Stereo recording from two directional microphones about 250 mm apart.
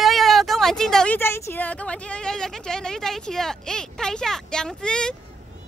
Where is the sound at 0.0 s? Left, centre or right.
Centre.